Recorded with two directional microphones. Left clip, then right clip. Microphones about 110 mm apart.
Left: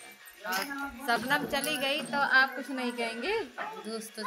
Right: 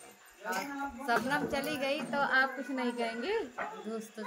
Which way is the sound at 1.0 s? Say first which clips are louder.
Left 2 dB; 15° left (ahead or behind).